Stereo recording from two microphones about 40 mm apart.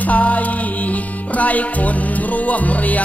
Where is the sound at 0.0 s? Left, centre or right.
Left.